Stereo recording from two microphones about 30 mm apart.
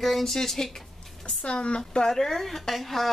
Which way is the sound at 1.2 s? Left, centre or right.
Left.